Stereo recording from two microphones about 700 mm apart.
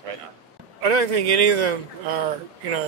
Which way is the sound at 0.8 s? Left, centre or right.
Right.